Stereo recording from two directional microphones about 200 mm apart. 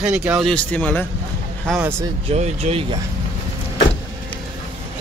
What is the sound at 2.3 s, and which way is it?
Speech, 30° right (ahead or behind).